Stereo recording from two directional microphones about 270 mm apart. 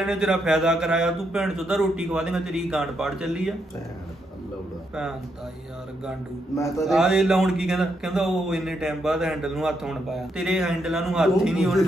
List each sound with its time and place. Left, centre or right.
0.0 s a man's voice: centre
6.8 s a man's voice: centre